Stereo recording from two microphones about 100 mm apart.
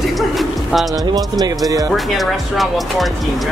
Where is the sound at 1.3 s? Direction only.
35° right (ahead or behind).